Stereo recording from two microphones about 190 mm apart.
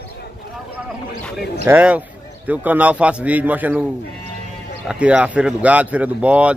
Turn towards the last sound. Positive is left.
turn(degrees=-5)  # may be behind; listen again after turning